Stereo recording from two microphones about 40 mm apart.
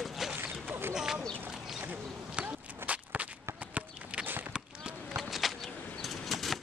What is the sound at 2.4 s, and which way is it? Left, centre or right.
Walk, right.